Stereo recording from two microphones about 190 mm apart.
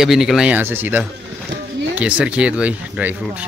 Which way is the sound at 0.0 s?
Centre (ahead or behind).